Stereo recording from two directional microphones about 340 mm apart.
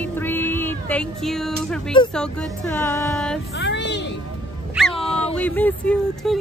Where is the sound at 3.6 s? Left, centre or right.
Left.